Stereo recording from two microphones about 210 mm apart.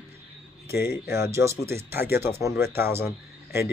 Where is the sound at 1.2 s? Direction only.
15° right (ahead or behind).